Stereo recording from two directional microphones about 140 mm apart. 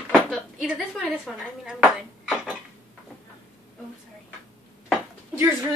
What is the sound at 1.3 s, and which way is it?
Speech, centre (ahead or behind).